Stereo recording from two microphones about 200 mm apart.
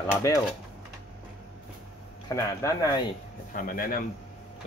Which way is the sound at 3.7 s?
45° left (ahead or behind).